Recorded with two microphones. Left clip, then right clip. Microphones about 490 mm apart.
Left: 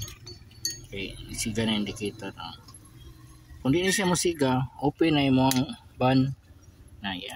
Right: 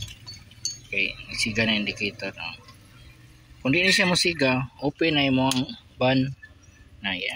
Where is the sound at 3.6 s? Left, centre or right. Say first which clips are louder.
Right 5 dB; left.